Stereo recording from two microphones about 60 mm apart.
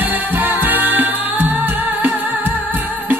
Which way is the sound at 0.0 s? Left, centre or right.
Right.